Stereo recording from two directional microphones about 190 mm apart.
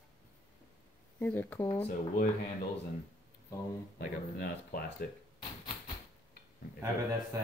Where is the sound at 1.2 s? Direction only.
10° left (ahead or behind).